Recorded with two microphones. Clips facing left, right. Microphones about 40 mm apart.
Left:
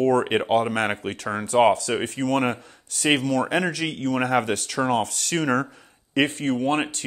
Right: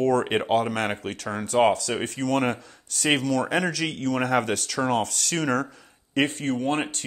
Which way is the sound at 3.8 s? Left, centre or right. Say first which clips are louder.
Left 1 dB; left.